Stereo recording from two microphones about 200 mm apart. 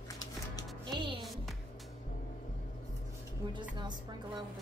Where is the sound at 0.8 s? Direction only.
25° right (ahead or behind).